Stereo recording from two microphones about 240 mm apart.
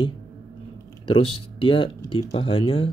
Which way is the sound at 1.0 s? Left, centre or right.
Left.